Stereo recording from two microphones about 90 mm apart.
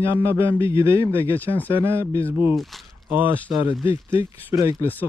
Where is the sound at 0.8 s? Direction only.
30° right (ahead or behind).